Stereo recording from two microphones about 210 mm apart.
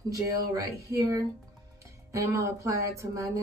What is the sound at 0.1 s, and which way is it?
Speech, 15° right (ahead or behind).